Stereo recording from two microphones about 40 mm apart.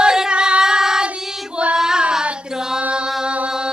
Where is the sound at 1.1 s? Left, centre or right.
Centre.